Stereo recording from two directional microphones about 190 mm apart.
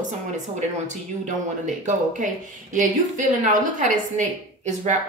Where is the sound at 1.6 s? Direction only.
40° right (ahead or behind).